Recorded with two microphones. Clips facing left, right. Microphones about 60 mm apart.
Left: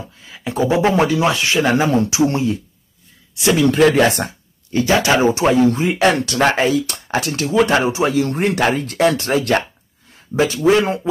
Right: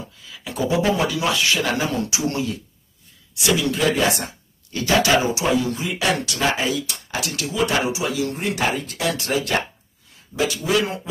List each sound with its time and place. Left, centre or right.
0.2 s speech: left
3.4 s speech: left
3.8 s speech: left
4.7 s speech: left
5.4 s speech: left
8.4 s speech: left